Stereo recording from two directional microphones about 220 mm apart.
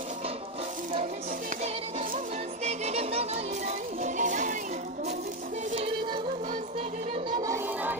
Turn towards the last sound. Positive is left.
turn(degrees=-10)  # may be behind; listen again after turning